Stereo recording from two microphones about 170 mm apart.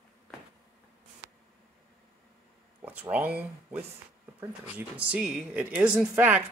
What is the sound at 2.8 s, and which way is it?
Speech, 10° right (ahead or behind).